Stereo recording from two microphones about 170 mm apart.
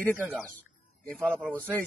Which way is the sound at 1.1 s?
5° left (ahead or behind).